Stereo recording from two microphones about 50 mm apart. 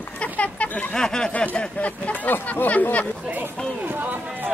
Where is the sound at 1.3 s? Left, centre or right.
Left.